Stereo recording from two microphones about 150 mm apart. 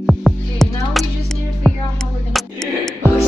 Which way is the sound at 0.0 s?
Centre (ahead or behind).